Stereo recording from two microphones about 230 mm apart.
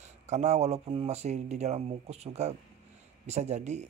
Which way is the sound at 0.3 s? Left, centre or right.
Right.